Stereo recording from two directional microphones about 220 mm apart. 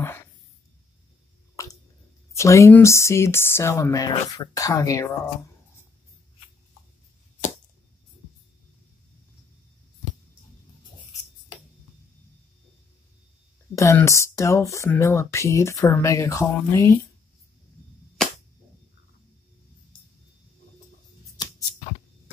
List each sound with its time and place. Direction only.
1.6 s squish: 15° left (ahead or behind)
2.3 s speech: 15° left (ahead or behind)
13.7 s speech: 15° left (ahead or behind)